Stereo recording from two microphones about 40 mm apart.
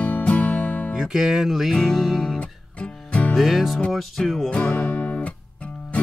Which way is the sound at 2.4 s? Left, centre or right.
Left.